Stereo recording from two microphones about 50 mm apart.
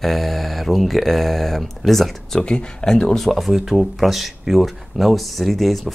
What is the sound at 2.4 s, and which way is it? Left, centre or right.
Speech, centre.